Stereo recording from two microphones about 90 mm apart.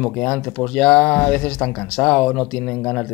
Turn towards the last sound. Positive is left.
turn(degrees=10)  # may be behind; listen again after turning